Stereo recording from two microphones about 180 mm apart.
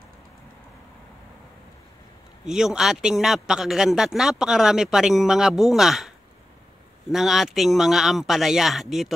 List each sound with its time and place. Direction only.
2.4 s speech: 5° right (ahead or behind)